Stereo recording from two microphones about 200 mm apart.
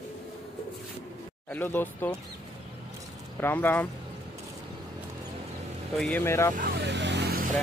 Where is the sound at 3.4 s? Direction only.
10° left (ahead or behind).